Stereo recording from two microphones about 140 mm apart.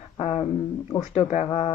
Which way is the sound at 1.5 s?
45° left (ahead or behind).